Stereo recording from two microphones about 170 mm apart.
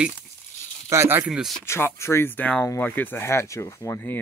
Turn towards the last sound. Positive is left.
turn(degrees=15)  # may be behind; listen again after turning